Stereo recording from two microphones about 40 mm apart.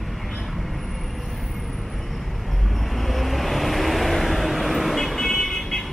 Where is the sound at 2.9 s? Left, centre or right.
Centre.